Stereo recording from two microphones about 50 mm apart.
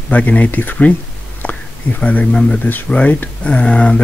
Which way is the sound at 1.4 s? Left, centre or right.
Left.